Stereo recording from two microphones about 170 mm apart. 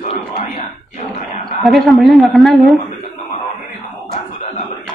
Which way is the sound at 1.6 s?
Centre (ahead or behind).